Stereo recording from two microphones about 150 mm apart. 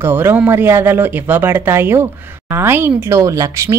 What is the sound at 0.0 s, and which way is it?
Speech, 15° right (ahead or behind).